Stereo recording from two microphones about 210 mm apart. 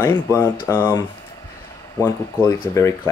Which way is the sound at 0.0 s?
15° left (ahead or behind).